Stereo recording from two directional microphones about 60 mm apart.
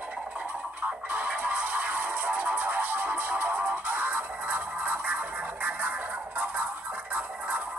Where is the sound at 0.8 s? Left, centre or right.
Right.